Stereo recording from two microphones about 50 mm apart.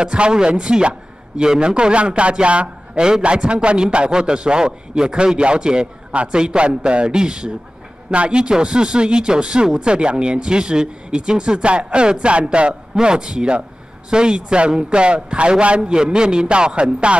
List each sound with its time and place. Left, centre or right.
0.0 s a man's voice: centre